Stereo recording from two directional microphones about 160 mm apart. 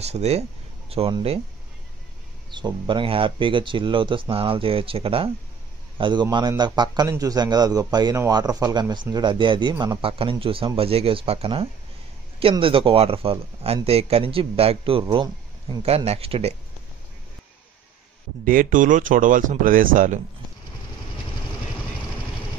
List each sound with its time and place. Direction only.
0.0 s speech: 40° right (ahead or behind)
2.5 s a man's voice: 30° right (ahead or behind)
18.4 s speech: 60° right (ahead or behind)